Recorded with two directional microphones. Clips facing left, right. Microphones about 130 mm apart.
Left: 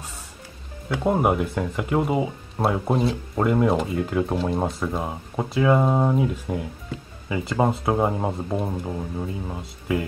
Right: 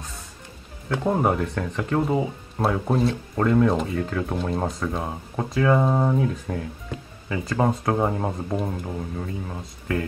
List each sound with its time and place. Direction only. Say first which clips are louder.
0.8 s speech: left 1 dB; 15° left (ahead or behind)
3.3 s speech: even; 15° left (ahead or behind)
4.4 s speech: left 2 dB; centre (ahead or behind)